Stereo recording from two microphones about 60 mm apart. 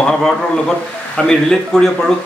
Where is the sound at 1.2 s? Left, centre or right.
Centre.